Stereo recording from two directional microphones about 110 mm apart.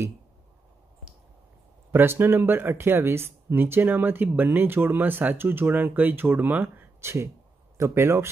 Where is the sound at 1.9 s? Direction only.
20° right (ahead or behind).